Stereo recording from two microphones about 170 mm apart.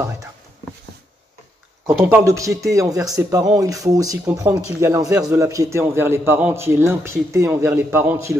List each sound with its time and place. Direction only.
2.0 s a man's voice: 15° right (ahead or behind)